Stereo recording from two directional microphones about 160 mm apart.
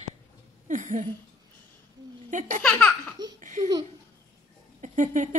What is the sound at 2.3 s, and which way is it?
Speech, 50° right (ahead or behind).